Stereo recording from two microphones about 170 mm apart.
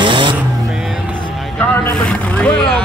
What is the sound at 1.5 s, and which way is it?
Speech, 5° left (ahead or behind).